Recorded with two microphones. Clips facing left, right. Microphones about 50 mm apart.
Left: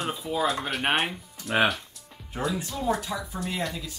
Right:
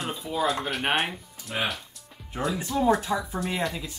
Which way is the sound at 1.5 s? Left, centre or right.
Left.